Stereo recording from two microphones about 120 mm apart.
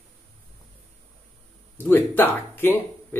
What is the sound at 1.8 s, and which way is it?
Speech, 15° left (ahead or behind).